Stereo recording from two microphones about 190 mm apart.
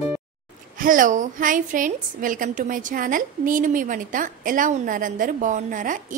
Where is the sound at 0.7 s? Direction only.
45° right (ahead or behind).